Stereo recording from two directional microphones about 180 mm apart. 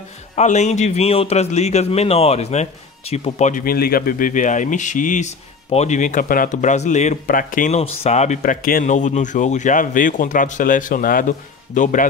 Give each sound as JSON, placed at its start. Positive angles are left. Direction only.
{"t": 0.4, "sound": "a man's voice", "side_deg": 40}